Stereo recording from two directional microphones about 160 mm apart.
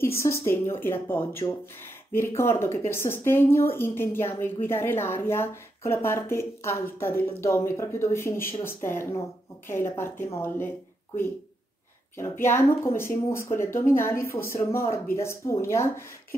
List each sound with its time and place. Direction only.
0.0 s a woman's voice: 15° left (ahead or behind)
12.2 s a woman's voice: 15° left (ahead or behind)